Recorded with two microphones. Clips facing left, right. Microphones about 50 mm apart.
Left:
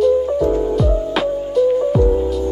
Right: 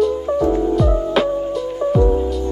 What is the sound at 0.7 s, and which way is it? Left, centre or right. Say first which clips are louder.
Music: right 1 dB; centre.